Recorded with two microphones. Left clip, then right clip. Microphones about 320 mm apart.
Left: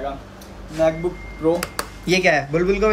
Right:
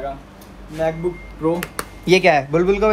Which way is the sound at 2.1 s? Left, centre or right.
Centre.